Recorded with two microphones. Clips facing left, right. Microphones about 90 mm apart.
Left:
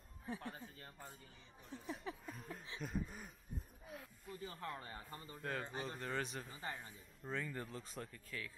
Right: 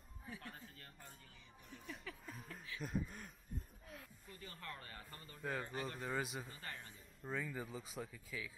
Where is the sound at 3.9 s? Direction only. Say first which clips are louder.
Left 7 dB; 5° left (ahead or behind).